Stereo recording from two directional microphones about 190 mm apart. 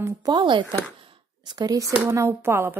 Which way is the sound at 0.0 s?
20° right (ahead or behind).